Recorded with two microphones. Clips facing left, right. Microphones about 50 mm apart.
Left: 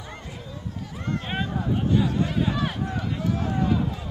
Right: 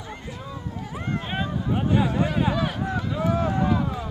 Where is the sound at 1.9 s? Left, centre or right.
Right.